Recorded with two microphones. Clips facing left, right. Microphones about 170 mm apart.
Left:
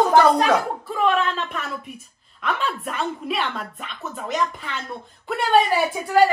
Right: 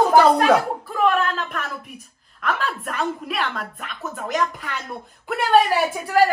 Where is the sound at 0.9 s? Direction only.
Centre (ahead or behind).